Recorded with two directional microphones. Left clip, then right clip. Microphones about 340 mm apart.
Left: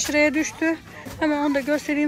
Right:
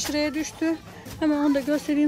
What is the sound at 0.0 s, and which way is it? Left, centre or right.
Speech, centre.